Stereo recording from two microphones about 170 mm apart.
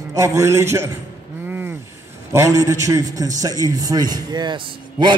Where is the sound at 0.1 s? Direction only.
20° right (ahead or behind).